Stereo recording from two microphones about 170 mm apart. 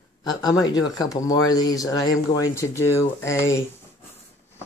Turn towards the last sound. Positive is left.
turn(degrees=15)  # may be behind; listen again after turning